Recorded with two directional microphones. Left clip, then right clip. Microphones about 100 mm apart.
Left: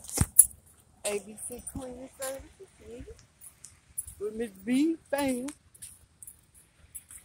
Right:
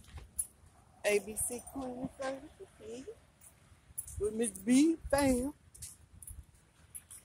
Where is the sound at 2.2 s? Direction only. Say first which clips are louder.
Left 3 dB; 20° right (ahead or behind).